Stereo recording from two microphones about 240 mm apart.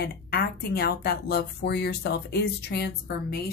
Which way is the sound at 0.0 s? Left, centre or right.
Left.